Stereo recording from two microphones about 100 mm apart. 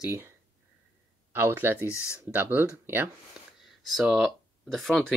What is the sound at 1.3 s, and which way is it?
Speech, 20° right (ahead or behind).